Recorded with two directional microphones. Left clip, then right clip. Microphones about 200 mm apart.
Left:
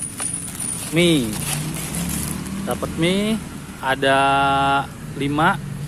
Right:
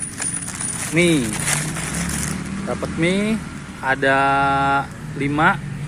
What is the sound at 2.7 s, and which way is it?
Speech, 5° left (ahead or behind).